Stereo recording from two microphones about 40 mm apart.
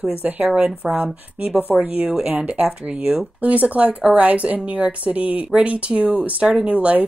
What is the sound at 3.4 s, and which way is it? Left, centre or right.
A woman's voice, right.